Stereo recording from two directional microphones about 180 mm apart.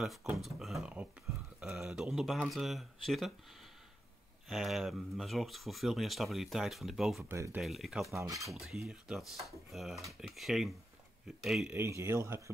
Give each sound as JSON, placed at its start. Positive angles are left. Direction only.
{"t": 0.0, "sound": "speech", "side_deg": 0}
{"t": 4.5, "sound": "speech", "side_deg": 0}
{"t": 7.2, "sound": "speech", "side_deg": -15}
{"t": 7.6, "sound": "speech", "side_deg": 0}
{"t": 8.1, "sound": "speech", "side_deg": -15}
{"t": 8.5, "sound": "speech", "side_deg": 0}
{"t": 11.7, "sound": "speech", "side_deg": -15}